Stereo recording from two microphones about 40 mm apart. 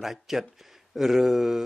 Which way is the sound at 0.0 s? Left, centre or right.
Centre.